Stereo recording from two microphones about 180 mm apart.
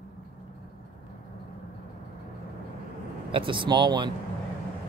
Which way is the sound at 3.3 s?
30° right (ahead or behind).